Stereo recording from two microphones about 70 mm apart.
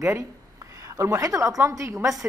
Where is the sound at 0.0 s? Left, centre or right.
Right.